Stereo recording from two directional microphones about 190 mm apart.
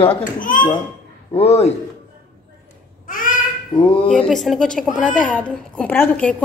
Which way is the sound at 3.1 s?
45° left (ahead or behind).